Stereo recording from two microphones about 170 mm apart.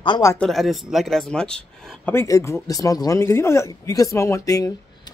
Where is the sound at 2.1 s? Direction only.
20° left (ahead or behind).